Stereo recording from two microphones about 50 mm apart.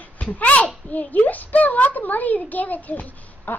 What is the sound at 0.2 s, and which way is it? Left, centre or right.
A child's voice, left.